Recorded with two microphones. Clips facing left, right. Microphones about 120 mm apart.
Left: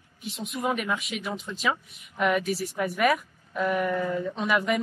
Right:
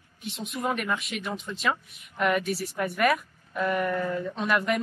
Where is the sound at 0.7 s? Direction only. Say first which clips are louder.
Even; 10° left (ahead or behind).